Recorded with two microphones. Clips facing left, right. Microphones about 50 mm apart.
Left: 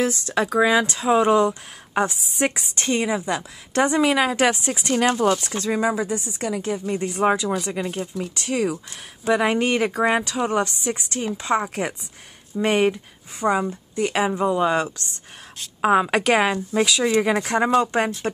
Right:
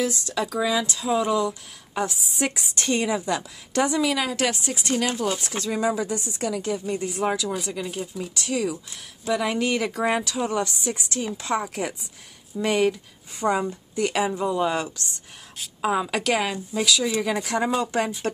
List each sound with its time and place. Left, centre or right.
0.0 s speech: left
5.3 s speech: centre
5.6 s speech: left
18.2 s speech: centre